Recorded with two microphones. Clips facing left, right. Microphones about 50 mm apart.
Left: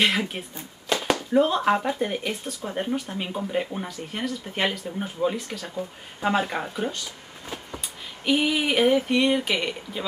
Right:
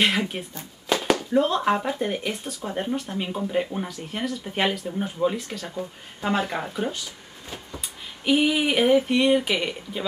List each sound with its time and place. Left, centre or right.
0.0 s speech: centre
0.9 s a sound: centre
1.3 s speech: centre
8.3 s speech: centre